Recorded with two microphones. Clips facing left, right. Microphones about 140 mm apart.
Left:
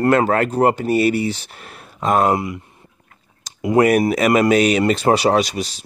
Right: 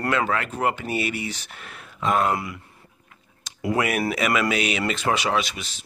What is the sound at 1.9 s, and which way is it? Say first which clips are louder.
Speech: left 5 dB; 45° left (ahead or behind).